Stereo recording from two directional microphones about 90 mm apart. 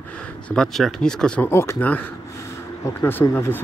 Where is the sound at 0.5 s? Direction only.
5° left (ahead or behind).